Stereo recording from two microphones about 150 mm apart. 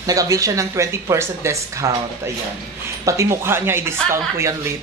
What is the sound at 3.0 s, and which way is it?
A woman's voice, 20° right (ahead or behind).